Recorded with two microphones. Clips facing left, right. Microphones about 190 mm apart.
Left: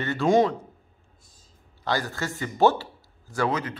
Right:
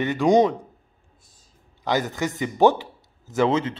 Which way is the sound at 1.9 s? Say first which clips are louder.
Right 4 dB; 20° right (ahead or behind).